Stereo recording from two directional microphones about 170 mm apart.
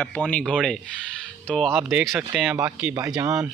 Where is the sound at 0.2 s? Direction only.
5° left (ahead or behind); by 3.4 s 15° right (ahead or behind).